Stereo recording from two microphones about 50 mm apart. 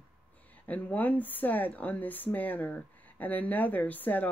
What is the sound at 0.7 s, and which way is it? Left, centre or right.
Speech, left.